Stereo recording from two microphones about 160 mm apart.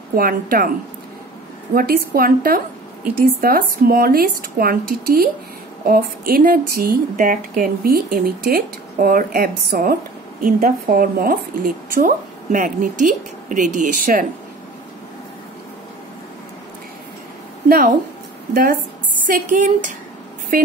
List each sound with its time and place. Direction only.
0.1 s a woman's voice: 65° right (ahead or behind)
1.7 s a woman's voice: 65° right (ahead or behind)
17.6 s a woman's voice: 70° right (ahead or behind)
19.2 s speech: 55° right (ahead or behind)
20.5 s a woman's voice: 65° right (ahead or behind)